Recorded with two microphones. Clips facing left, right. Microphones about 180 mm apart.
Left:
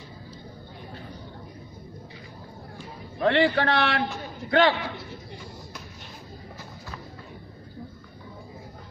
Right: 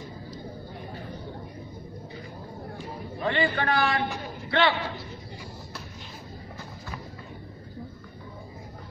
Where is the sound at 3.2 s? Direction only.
65° left (ahead or behind).